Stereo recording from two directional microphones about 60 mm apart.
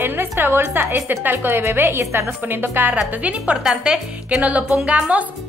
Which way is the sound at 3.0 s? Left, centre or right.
Right.